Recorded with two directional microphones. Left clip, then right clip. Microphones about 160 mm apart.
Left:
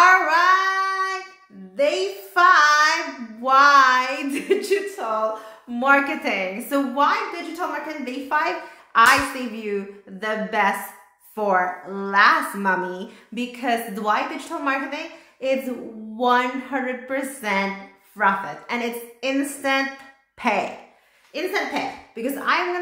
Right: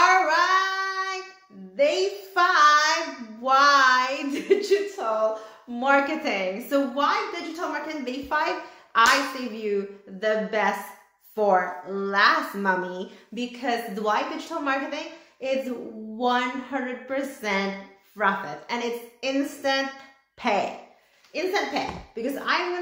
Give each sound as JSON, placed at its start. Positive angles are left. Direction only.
{"t": 0.0, "sound": "child singing", "side_deg": 20}
{"t": 3.4, "sound": "a sound", "side_deg": 15}
{"t": 8.0, "sound": "a woman's voice", "side_deg": 15}